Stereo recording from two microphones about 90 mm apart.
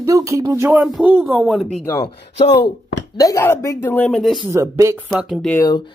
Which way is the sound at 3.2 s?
40° left (ahead or behind).